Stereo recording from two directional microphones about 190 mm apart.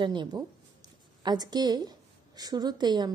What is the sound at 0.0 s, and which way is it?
A woman's voice, 25° right (ahead or behind).